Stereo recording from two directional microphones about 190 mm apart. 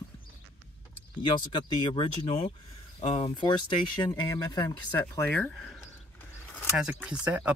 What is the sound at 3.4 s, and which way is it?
Speech, 25° left (ahead or behind).